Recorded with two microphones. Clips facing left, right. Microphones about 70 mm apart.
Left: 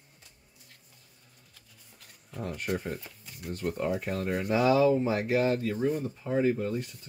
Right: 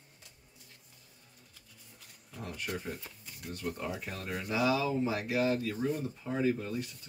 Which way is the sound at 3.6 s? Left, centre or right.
Left.